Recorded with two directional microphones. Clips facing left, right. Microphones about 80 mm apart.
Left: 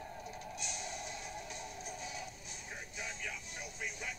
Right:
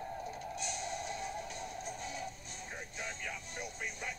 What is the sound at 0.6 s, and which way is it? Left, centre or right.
Music, right.